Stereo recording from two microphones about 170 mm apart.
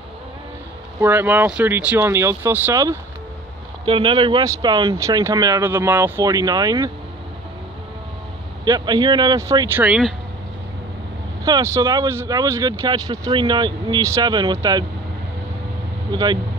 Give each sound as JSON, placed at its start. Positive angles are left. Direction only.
{"t": 1.0, "sound": "speech", "side_deg": -10}
{"t": 3.8, "sound": "speech", "side_deg": -30}
{"t": 8.6, "sound": "speech", "side_deg": -25}
{"t": 11.4, "sound": "speech", "side_deg": -20}
{"t": 16.1, "sound": "speech", "side_deg": -25}